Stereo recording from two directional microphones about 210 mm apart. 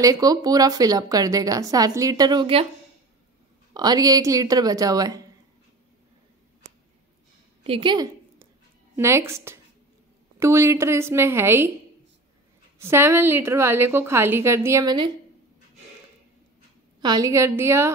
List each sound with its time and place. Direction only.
0.0 s a woman's voice: 15° right (ahead or behind)
3.7 s a woman's voice: 20° right (ahead or behind)
7.6 s a sound: 25° right (ahead or behind)
8.9 s a woman's voice: 15° right (ahead or behind)
12.8 s a woman's voice: 10° right (ahead or behind)
17.0 s a woman's voice: 15° right (ahead or behind)